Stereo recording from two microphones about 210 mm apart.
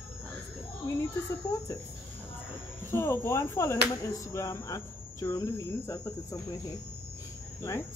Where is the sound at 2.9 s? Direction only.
10° left (ahead or behind).